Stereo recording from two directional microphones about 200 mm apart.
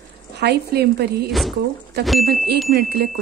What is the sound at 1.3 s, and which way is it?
Speech, centre (ahead or behind).